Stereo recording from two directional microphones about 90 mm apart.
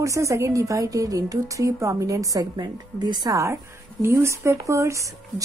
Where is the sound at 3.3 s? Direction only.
35° right (ahead or behind).